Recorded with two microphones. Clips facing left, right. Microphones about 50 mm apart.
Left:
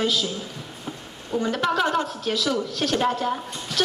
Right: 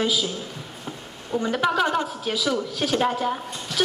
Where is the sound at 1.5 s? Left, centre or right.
Centre.